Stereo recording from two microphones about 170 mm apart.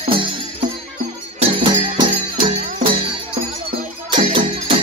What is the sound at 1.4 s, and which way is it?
Music, 35° right (ahead or behind).